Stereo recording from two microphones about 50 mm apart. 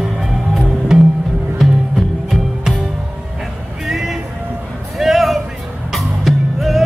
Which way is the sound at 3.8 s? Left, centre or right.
Centre.